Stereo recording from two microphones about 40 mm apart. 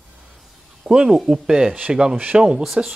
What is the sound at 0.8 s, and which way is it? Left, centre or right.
Speech, centre.